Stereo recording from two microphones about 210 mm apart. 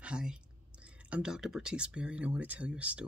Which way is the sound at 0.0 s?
5° right (ahead or behind).